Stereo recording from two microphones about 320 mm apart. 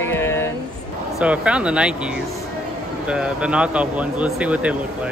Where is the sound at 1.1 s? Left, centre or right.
Centre.